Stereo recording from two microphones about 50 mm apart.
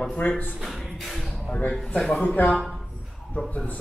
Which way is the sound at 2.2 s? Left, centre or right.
Left.